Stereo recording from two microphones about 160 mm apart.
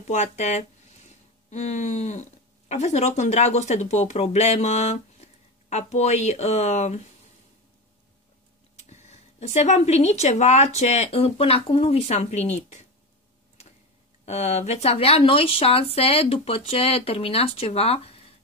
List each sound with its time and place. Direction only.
0.0 s speech: 45° left (ahead or behind)
8.8 s speech: 45° left (ahead or behind)
14.2 s speech: 45° left (ahead or behind)